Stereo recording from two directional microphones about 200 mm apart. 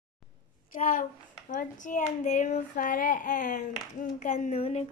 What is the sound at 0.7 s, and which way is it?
A child's voice, 40° left (ahead or behind).